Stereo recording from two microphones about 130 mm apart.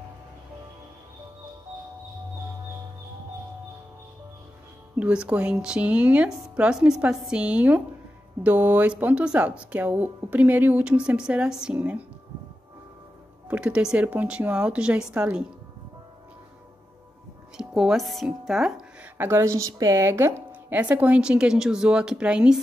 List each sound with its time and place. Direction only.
4.9 s a woman's voice: 10° right (ahead or behind)
13.5 s a woman's voice: 10° right (ahead or behind)
17.6 s speech: 5° right (ahead or behind)
19.1 s a woman's voice: 20° right (ahead or behind)